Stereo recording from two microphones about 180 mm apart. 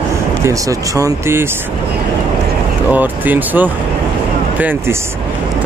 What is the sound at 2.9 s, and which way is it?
Speech, 10° right (ahead or behind).